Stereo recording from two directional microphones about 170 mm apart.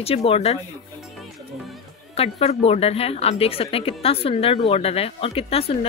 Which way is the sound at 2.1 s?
35° left (ahead or behind).